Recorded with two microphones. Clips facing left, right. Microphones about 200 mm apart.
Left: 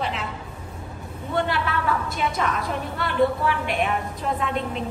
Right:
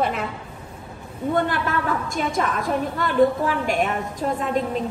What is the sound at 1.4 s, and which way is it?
A woman's voice, 50° right (ahead or behind).